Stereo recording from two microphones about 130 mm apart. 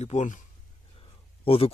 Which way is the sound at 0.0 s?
65° left (ahead or behind).